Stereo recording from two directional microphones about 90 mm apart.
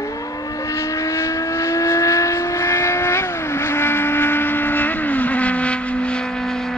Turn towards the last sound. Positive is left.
turn(degrees=5)  # may be behind; listen again after turning